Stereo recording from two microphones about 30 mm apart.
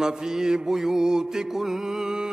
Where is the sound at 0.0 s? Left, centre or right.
Right.